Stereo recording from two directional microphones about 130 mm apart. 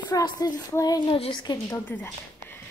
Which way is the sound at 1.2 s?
40° left (ahead or behind).